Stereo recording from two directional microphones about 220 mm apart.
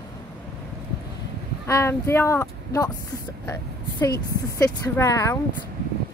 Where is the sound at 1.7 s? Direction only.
10° left (ahead or behind).